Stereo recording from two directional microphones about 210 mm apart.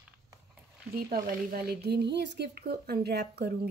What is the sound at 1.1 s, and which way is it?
Speech, 45° right (ahead or behind).